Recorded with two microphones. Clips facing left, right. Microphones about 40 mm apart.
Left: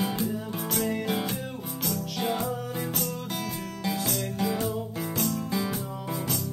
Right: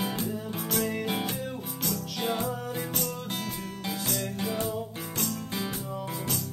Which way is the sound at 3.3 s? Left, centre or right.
Right.